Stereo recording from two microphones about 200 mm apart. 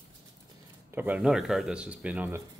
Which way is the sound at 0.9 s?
10° right (ahead or behind).